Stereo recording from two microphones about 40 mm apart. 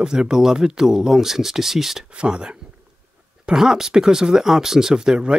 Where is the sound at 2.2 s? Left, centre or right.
Right.